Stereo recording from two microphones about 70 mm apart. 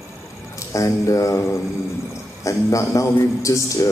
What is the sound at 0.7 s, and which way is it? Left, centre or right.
A man's voice, left.